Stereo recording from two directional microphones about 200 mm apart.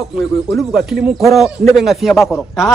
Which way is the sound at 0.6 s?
Centre (ahead or behind).